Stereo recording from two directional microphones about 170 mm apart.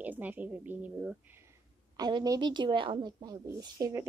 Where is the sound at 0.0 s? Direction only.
10° right (ahead or behind).